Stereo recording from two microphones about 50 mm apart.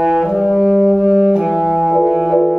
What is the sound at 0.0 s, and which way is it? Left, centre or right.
Brass instrument, centre.